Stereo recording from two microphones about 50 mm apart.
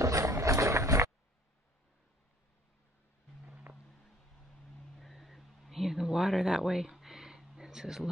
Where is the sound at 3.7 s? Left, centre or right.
Right.